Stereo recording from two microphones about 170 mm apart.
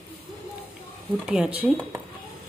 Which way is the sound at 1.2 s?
5° right (ahead or behind).